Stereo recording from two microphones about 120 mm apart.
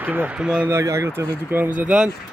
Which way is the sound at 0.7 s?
25° right (ahead or behind).